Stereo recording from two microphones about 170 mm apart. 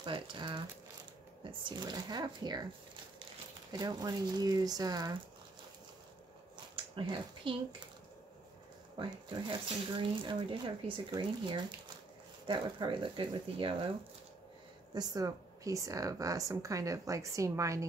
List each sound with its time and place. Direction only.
0.0 s speech: 30° right (ahead or behind)
3.7 s speech: 25° right (ahead or behind)
6.7 s speech: 30° right (ahead or behind)
8.9 s speech: 30° right (ahead or behind)
15.0 s speech: 20° right (ahead or behind)